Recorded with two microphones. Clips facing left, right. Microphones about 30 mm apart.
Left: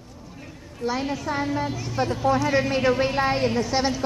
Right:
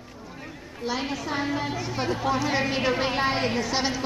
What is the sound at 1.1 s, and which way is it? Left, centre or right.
A woman's voice, centre.